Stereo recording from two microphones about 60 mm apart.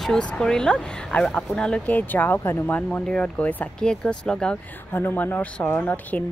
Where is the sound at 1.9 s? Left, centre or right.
Left.